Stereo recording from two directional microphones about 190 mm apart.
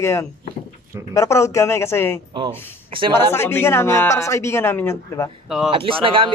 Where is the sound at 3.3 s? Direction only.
10° left (ahead or behind).